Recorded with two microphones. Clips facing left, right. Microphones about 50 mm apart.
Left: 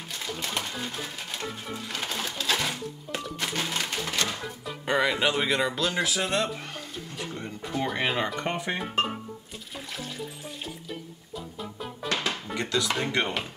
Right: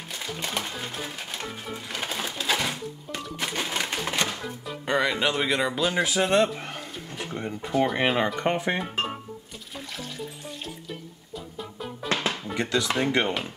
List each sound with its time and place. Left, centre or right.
0.1 s speech: centre
4.4 s speech: centre
5.8 s speech: centre
7.6 s speech: centre
9.9 s music: centre
12.1 s music: right
12.5 s speech: centre